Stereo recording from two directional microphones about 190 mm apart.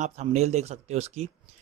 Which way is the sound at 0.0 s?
40° right (ahead or behind).